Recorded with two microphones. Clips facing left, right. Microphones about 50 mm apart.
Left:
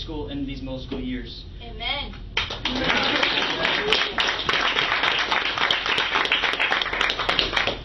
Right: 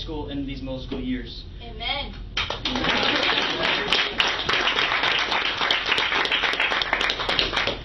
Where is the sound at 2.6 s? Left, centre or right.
Left.